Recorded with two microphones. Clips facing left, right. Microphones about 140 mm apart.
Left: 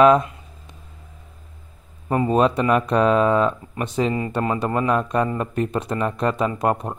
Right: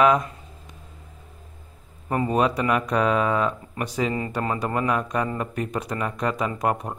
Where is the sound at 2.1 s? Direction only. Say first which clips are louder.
Left 4 dB; 25° left (ahead or behind).